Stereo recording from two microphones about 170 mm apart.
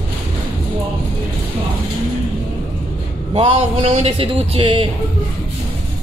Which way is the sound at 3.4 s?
35° right (ahead or behind).